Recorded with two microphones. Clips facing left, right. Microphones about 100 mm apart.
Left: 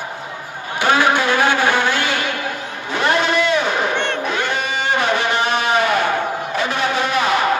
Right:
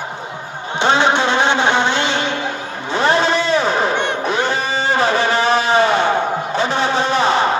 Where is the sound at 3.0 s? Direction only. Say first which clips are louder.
Right 1 dB; 30° right (ahead or behind).